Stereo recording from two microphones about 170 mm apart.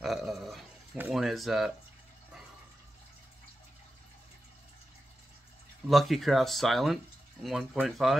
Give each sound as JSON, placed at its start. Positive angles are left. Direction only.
{"t": 0.0, "sound": "dog", "side_deg": 0}
{"t": 0.9, "sound": "speech", "side_deg": -5}
{"t": 5.9, "sound": "speech", "side_deg": 0}